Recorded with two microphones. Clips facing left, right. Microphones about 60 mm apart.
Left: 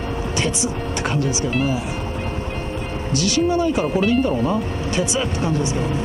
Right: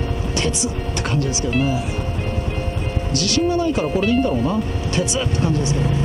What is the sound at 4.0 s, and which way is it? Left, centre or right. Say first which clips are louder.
Speech: right 1 dB; centre.